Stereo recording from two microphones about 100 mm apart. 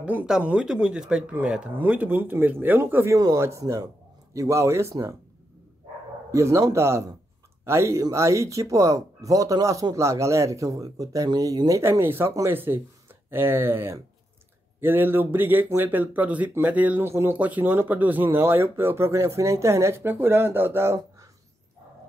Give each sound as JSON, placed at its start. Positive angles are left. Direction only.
{"t": 0.0, "sound": "speech", "side_deg": -15}
{"t": 6.3, "sound": "speech", "side_deg": -30}
{"t": 11.8, "sound": "speech", "side_deg": -20}